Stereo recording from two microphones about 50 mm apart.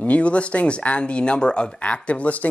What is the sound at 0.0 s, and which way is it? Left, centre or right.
Speech, left.